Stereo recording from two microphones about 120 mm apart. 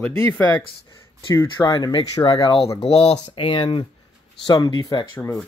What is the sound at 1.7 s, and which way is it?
Speech, 35° left (ahead or behind).